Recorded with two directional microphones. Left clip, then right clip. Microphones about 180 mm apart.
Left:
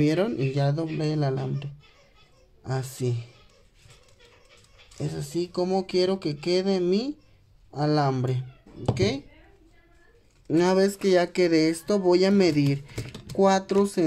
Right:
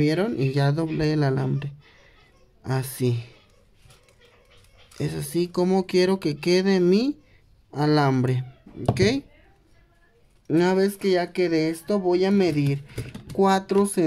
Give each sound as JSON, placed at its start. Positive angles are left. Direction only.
{"t": 0.0, "sound": "speech", "side_deg": -5}
{"t": 0.5, "sound": "speech", "side_deg": -20}
{"t": 4.9, "sound": "speech", "side_deg": -20}
{"t": 10.4, "sound": "speech", "side_deg": -5}